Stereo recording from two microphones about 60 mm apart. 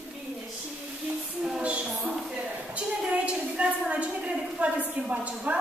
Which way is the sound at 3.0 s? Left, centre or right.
Centre.